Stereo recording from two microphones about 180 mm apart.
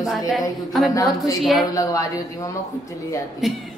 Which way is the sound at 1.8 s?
20° left (ahead or behind).